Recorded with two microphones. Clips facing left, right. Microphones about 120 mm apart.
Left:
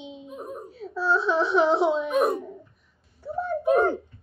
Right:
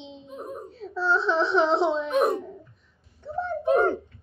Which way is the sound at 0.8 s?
Centre (ahead or behind).